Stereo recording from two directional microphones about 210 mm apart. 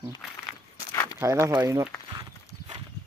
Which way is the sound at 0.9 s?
20° left (ahead or behind).